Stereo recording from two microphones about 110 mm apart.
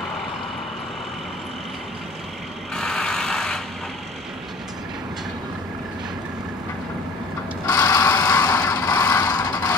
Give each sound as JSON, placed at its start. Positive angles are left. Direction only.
{"t": 2.7, "sound": "vehicle", "side_deg": 5}
{"t": 7.6, "sound": "mechanisms", "side_deg": 30}
{"t": 8.6, "sound": "vehicle", "side_deg": 30}